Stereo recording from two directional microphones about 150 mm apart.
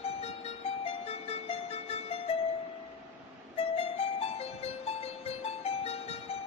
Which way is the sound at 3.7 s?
40° left (ahead or behind).